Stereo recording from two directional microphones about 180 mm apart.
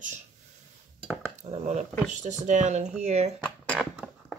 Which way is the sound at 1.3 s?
35° right (ahead or behind).